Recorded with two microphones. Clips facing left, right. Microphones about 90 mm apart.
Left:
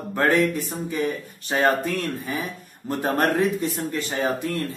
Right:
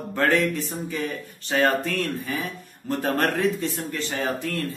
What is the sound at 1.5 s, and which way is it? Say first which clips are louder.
Speech: right 1 dB; 15° left (ahead or behind).